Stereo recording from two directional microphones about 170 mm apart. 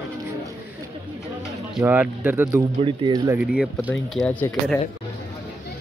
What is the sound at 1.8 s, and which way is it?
Speech, 10° right (ahead or behind).